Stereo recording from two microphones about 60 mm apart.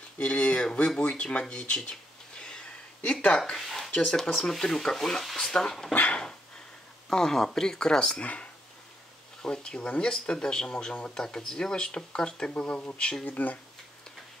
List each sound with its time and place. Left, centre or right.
0.2 s speech: centre
3.0 s a sound: left; by 4.0 s centre
4.2 s speech: centre
5.9 s dog: left
7.1 s speech: centre
8.2 s speech: left
13.2 s speech: left